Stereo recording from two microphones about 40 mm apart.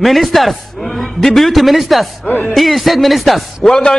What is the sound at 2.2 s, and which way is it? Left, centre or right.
Speech, left.